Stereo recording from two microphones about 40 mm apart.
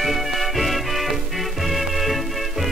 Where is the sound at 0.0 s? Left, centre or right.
Centre.